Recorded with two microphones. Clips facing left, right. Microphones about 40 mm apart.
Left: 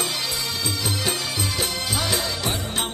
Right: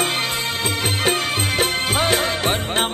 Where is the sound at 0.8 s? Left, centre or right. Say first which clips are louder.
Right 8 dB; right.